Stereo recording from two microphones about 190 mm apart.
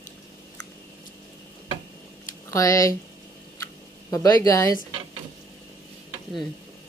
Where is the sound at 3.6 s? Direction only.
15° left (ahead or behind).